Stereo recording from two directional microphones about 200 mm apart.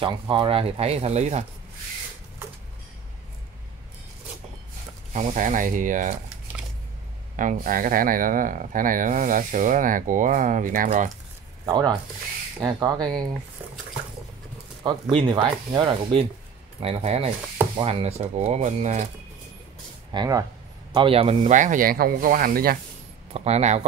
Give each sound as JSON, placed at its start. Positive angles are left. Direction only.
{"t": 0.0, "sound": "speech", "side_deg": -25}
{"t": 5.1, "sound": "speech", "side_deg": -35}
{"t": 7.3, "sound": "speech", "side_deg": -40}
{"t": 11.6, "sound": "speech", "side_deg": -20}
{"t": 14.8, "sound": "speech", "side_deg": -25}
{"t": 20.1, "sound": "speech", "side_deg": -20}
{"t": 23.3, "sound": "speech", "side_deg": -30}